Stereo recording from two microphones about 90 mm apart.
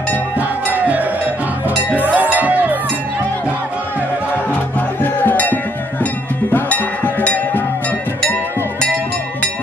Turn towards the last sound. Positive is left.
turn(degrees=20)  # may be behind; listen again after turning